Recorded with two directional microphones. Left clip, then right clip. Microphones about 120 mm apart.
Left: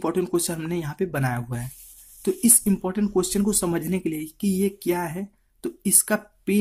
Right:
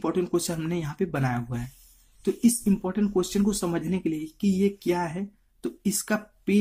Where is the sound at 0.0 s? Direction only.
40° left (ahead or behind).